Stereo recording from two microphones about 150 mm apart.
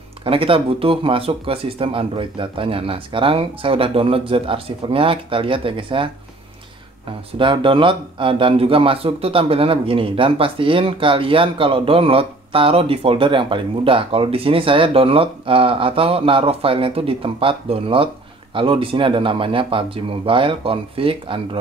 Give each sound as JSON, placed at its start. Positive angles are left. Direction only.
{"t": 0.2, "sound": "speech", "side_deg": -35}
{"t": 7.3, "sound": "speech", "side_deg": -35}